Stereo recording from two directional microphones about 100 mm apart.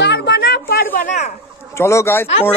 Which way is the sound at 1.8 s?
30° left (ahead or behind).